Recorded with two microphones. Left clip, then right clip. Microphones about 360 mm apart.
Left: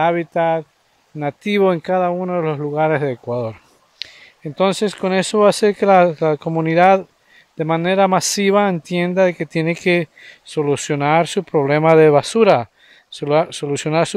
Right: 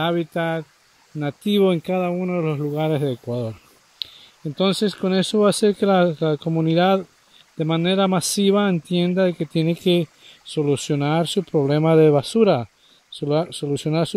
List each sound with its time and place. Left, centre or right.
0.0 s speech: left
4.8 s speech: left